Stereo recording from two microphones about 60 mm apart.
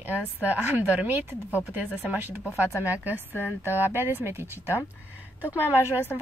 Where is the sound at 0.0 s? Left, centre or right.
Right.